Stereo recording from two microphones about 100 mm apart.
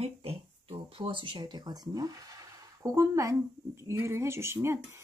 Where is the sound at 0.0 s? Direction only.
75° right (ahead or behind).